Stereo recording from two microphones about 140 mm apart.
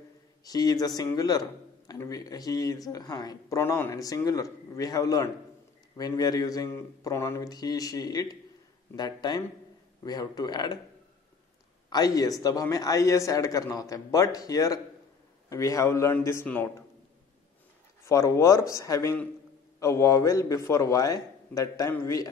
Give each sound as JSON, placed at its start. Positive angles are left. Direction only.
{"t": 0.5, "sound": "a man's voice", "side_deg": 25}
{"t": 11.9, "sound": "a man's voice", "side_deg": 25}
{"t": 18.0, "sound": "a man's voice", "side_deg": 20}